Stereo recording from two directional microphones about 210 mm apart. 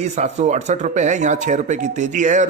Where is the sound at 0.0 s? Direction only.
35° right (ahead or behind).